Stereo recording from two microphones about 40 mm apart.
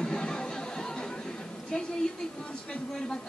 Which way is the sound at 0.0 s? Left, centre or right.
Centre.